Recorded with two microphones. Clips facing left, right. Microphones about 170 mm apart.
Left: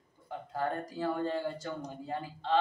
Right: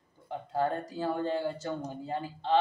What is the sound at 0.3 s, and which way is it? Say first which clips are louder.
Speech: right 4 dB; 25° right (ahead or behind).